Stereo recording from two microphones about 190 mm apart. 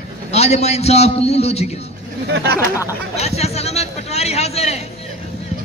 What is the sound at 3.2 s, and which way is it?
A man's voice, 35° left (ahead or behind).